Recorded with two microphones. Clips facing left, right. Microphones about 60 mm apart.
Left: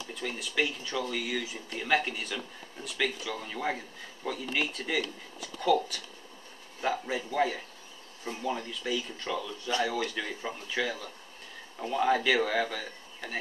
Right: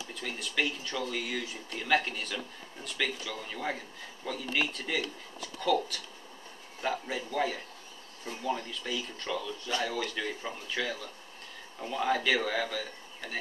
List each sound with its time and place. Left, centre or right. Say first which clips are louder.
0.1 s speech: left 2 dB; centre
6.8 s a man's voice: left 2 dB; centre